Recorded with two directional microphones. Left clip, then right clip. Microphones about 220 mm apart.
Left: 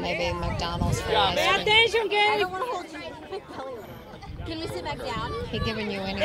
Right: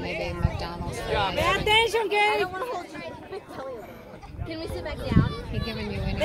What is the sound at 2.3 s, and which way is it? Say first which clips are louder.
Speech: left 1 dB; 45° left (ahead or behind).